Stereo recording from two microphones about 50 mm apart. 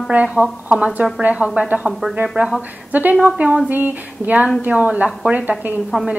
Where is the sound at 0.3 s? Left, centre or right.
Centre.